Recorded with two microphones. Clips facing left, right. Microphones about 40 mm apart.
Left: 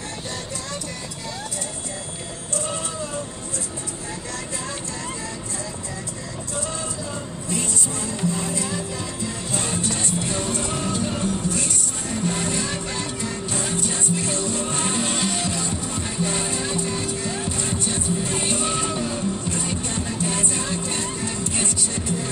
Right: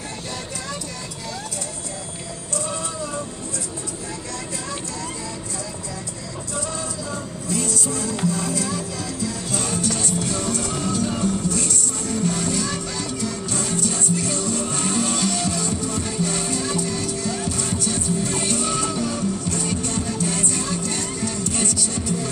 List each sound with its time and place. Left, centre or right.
2.5 s music: left
7.4 s music: left